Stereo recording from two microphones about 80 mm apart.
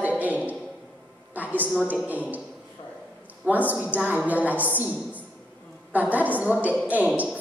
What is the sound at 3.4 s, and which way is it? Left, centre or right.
A man's voice, right.